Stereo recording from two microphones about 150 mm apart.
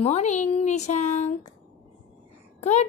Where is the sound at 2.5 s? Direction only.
50° left (ahead or behind).